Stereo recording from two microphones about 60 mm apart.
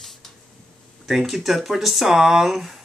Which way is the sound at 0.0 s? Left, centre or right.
Centre.